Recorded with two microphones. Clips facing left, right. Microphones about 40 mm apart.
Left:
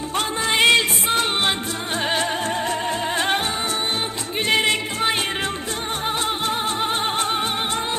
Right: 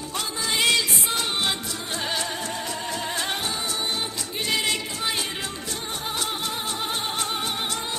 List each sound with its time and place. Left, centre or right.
0.1 s music: left
4.5 s music: left